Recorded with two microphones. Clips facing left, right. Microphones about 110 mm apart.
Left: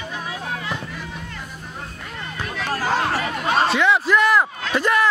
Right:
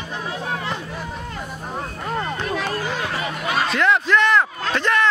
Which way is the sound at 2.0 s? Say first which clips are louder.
Right 7 dB; 45° right (ahead or behind).